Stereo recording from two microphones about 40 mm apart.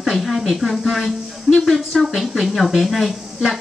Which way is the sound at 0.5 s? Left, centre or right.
Centre.